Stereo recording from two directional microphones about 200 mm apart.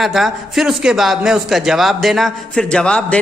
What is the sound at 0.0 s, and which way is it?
A man's voice, centre (ahead or behind).